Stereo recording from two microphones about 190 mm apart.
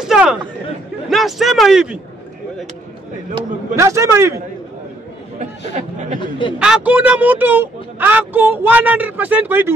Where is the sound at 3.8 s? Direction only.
15° right (ahead or behind).